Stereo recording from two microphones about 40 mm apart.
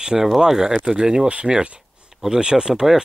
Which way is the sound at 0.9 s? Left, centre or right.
Right.